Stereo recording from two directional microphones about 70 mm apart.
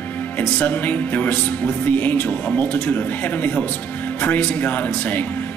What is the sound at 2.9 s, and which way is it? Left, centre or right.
Speech, left.